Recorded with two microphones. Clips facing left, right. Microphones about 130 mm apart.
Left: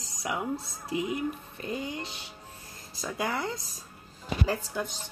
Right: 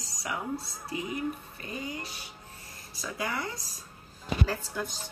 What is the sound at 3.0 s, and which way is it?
Speech, 25° left (ahead or behind).